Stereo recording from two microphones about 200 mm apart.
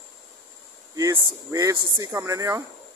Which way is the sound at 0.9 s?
15° right (ahead or behind).